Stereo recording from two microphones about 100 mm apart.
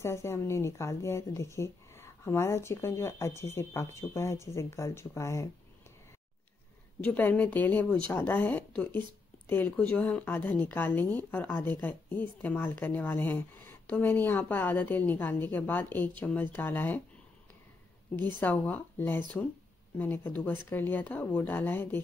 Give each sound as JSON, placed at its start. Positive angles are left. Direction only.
{"t": 0.0, "sound": "speech", "side_deg": 25}
{"t": 7.1, "sound": "speech", "side_deg": 15}
{"t": 18.4, "sound": "speech", "side_deg": 15}